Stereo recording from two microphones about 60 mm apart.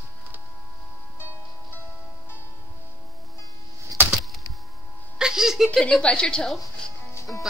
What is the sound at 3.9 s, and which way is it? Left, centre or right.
Music, right.